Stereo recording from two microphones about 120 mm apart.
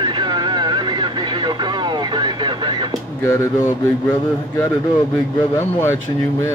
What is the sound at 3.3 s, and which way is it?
Speech, 20° left (ahead or behind).